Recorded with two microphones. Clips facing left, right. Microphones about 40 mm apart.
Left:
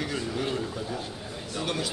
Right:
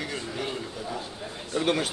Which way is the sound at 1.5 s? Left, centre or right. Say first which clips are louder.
Right 5 dB; right.